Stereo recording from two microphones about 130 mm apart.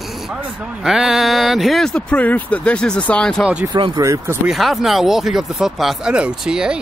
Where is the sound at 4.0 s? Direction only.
20° right (ahead or behind).